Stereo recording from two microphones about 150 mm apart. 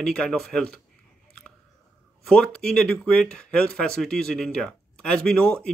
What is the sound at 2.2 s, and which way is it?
Speech, 5° left (ahead or behind).